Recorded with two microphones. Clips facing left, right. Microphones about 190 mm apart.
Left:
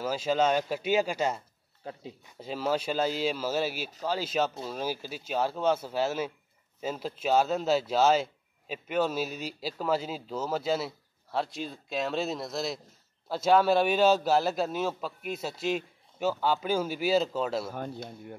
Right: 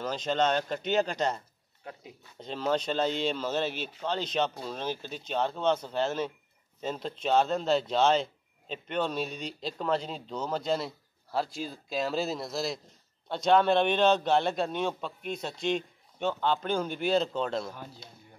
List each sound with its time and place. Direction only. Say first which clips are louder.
0.0 s speech: left 2 dB; 5° left (ahead or behind)
1.8 s speech: left 3 dB; 30° left (ahead or behind)
2.3 s speech: even; 5° left (ahead or behind)
17.7 s speech: left 9 dB; 55° left (ahead or behind)